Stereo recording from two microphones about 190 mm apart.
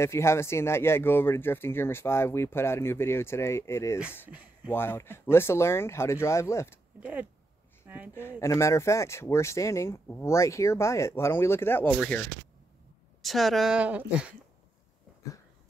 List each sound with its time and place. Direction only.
0.0 s speech: 15° left (ahead or behind)
4.3 s speech: 10° right (ahead or behind)
4.7 s speech: 10° left (ahead or behind)
7.0 s speech: 5° right (ahead or behind)
7.8 s a sound: 10° right (ahead or behind)
8.4 s a woman's voice: 15° left (ahead or behind); by 14.0 s 5° right (ahead or behind)